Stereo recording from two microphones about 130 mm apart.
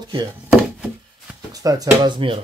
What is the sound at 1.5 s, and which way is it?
Speech, 30° right (ahead or behind).